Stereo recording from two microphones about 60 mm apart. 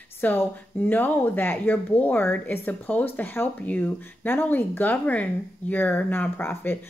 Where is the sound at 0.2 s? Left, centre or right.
Left.